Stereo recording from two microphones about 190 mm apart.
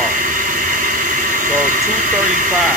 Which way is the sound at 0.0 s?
45° right (ahead or behind).